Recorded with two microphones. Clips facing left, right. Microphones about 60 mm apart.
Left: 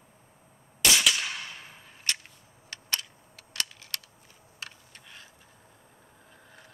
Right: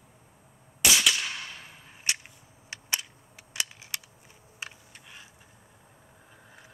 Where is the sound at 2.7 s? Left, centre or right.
Centre.